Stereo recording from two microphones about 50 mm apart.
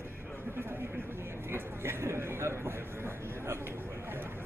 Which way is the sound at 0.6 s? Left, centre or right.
Right.